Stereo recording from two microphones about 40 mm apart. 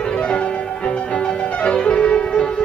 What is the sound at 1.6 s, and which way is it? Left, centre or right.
Music, left.